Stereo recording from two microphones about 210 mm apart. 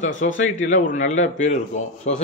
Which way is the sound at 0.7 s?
35° left (ahead or behind).